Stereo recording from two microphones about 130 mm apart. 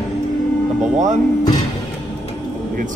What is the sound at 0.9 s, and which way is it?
Speech, 65° right (ahead or behind).